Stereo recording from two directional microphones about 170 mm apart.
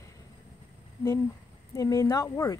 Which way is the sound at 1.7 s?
20° left (ahead or behind).